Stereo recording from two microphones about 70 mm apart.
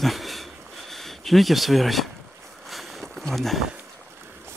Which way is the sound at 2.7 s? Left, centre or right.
Centre.